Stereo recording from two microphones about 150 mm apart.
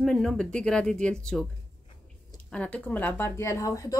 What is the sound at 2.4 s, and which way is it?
Speech, 10° left (ahead or behind).